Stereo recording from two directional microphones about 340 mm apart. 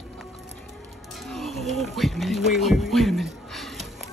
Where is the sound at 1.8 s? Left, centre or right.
Centre.